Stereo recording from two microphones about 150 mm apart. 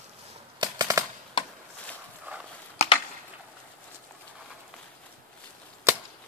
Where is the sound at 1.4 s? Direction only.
35° left (ahead or behind).